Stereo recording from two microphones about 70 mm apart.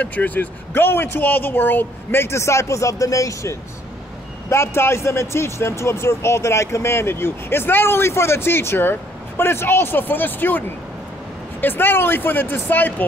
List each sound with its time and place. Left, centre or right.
0.0 s speech: left
4.5 s speech: left
11.6 s speech: left